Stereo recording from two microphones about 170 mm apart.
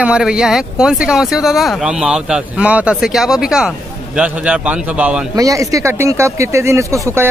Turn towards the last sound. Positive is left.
turn(degrees=-15)  # may be behind; listen again after turning